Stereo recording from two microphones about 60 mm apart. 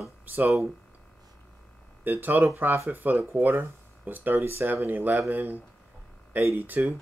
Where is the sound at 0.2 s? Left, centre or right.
Right.